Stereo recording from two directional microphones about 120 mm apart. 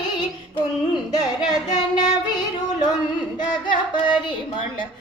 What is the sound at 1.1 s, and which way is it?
Child singing, 35° left (ahead or behind).